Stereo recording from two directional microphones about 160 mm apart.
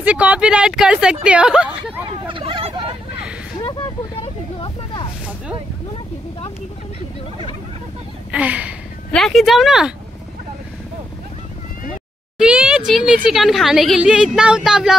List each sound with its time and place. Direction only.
0.0 s speech: 10° right (ahead or behind)
2.2 s hubbub: 30° right (ahead or behind)
4.2 s vehicle: 35° left (ahead or behind)
8.3 s a woman's voice: 10° right (ahead or behind)
12.4 s a woman's voice: 5° right (ahead or behind)